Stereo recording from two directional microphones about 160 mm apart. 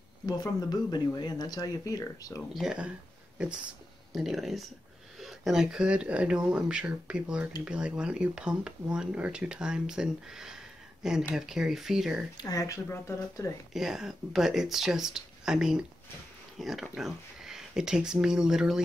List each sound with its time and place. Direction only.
0.3 s speech: 25° left (ahead or behind)
2.5 s speech: 5° right (ahead or behind)
4.1 s speech: centre (ahead or behind)
12.4 s speech: 25° left (ahead or behind)
13.7 s speech: 5° right (ahead or behind)